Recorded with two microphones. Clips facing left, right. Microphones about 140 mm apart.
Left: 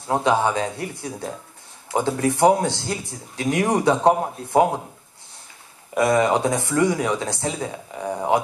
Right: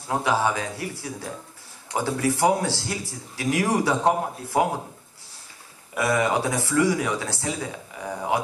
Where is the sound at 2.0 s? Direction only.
25° left (ahead or behind).